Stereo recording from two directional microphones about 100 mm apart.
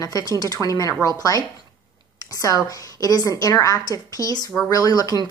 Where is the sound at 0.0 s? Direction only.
40° left (ahead or behind).